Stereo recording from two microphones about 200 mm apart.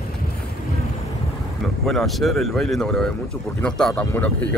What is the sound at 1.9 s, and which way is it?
Speech, centre (ahead or behind).